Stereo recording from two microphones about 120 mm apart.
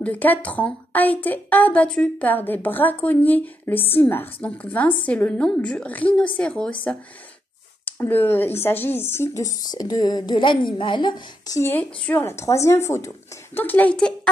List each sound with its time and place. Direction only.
0.0 s a woman's voice: 15° left (ahead or behind); by 11.6 s 35° left (ahead or behind)
11.6 s a woman's voice: 15° left (ahead or behind)